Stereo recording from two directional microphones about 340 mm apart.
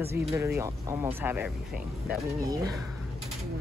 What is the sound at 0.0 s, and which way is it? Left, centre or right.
Speech, centre.